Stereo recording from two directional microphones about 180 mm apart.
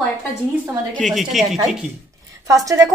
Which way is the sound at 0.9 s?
Centre (ahead or behind).